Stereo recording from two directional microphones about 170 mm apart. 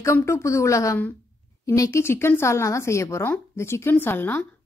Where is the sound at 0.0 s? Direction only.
15° left (ahead or behind).